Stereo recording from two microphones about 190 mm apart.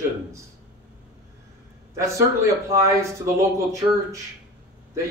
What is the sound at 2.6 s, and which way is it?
Speech, 15° right (ahead or behind).